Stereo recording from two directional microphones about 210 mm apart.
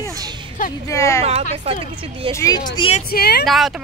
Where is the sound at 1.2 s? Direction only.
30° right (ahead or behind).